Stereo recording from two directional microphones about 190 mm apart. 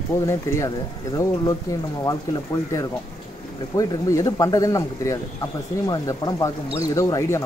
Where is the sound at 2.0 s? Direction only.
20° left (ahead or behind).